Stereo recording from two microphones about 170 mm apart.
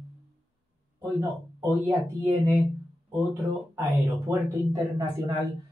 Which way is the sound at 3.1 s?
15° right (ahead or behind).